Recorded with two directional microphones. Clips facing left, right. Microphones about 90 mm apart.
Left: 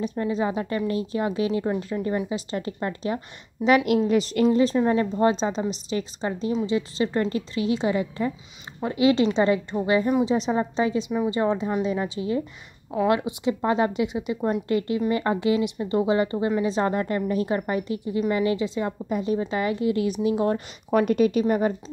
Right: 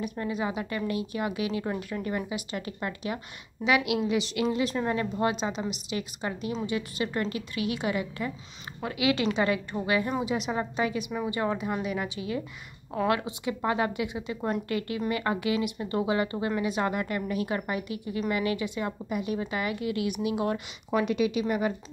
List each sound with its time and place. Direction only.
0.0 s a woman's voice: 30° left (ahead or behind)
20.9 s speech: 45° left (ahead or behind)